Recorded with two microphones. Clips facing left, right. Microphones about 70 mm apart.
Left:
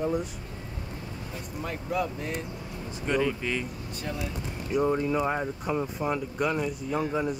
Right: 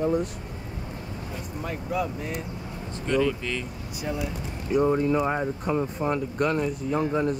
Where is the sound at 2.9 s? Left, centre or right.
Centre.